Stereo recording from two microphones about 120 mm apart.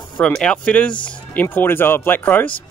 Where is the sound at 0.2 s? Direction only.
5° left (ahead or behind).